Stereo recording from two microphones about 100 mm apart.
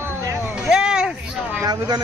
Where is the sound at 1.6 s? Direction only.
40° right (ahead or behind).